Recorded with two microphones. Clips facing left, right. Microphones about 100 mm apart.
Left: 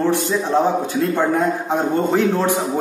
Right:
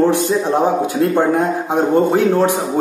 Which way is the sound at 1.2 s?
15° right (ahead or behind).